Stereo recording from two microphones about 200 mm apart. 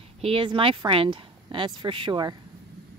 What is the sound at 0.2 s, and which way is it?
A woman's voice, 25° right (ahead or behind).